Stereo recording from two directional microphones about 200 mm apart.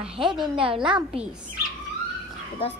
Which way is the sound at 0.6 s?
25° right (ahead or behind).